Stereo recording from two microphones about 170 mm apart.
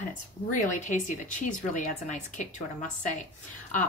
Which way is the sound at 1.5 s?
45° left (ahead or behind).